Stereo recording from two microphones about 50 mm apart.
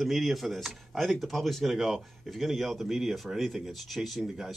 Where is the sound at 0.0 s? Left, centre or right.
Centre.